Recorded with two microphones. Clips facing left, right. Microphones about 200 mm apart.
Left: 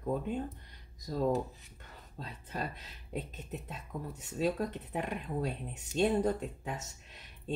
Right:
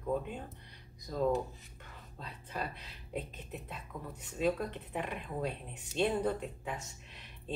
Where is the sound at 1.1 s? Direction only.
35° left (ahead or behind).